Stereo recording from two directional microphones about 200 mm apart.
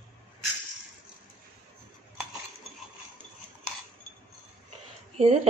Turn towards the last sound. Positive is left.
turn(degrees=-30)  # may be behind; listen again after turning